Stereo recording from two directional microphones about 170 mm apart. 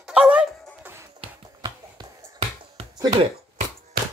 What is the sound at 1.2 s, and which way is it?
Finger snapping, 25° right (ahead or behind).